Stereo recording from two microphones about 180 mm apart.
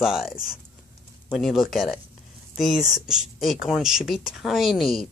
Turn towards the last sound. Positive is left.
turn(degrees=0)  # may be behind; listen again after turning